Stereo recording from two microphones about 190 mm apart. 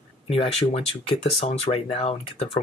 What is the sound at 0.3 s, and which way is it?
Speech, 30° left (ahead or behind).